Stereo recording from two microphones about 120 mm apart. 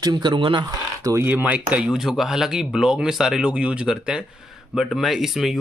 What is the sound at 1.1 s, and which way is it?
Speech, 15° right (ahead or behind).